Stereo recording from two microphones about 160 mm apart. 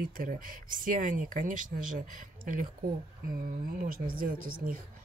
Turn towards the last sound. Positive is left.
turn(degrees=-60)  # may be behind; listen again after turning